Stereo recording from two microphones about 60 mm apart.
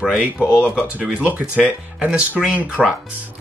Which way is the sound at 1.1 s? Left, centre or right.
Right.